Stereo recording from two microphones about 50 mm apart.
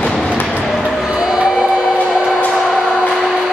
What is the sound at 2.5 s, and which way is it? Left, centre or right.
Music, centre.